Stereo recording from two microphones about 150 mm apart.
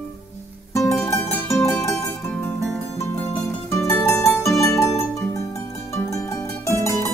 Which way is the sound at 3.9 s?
15° left (ahead or behind).